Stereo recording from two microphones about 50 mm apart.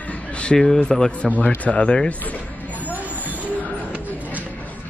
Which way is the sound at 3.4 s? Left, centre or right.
Right.